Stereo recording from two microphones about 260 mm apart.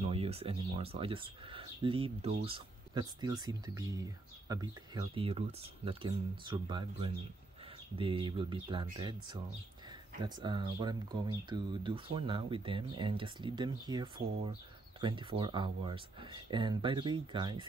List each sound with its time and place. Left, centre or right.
0.0 s speech: right